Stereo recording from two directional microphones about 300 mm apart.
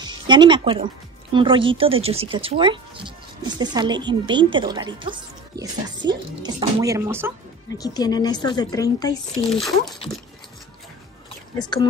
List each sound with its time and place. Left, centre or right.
0.3 s speech: centre
7.7 s speech: centre
11.5 s speech: centre